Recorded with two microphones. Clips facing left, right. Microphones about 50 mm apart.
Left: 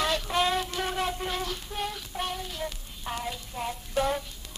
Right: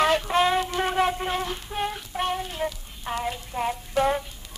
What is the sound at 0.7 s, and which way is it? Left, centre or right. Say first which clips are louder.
Child singing: right 6 dB; right.